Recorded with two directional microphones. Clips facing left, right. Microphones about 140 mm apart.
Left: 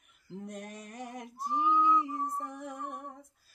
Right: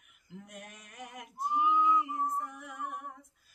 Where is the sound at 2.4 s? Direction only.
35° left (ahead or behind).